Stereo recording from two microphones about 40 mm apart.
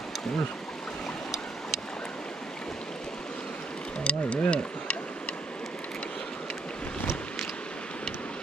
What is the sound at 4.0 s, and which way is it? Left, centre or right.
Speech, left.